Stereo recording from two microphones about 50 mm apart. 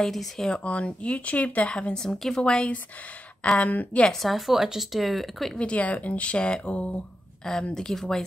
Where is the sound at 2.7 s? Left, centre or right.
Left.